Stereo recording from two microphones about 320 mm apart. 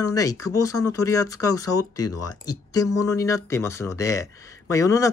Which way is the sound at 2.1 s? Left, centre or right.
Left.